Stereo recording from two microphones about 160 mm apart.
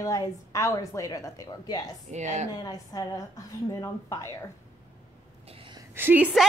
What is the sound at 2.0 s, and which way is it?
Speech, 45° right (ahead or behind).